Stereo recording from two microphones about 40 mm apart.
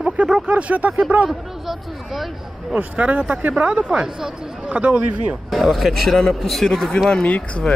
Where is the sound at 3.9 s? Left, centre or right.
Centre.